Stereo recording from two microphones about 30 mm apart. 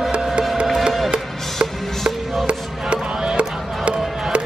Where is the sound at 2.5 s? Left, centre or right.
Right.